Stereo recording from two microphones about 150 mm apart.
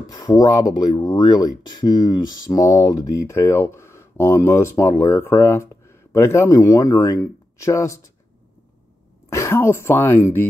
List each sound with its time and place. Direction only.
0.0 s speech: 25° left (ahead or behind)
9.3 s speech: 20° left (ahead or behind)